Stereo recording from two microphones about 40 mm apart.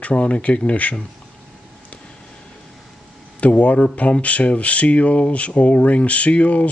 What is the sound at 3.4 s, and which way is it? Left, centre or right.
Speech, left.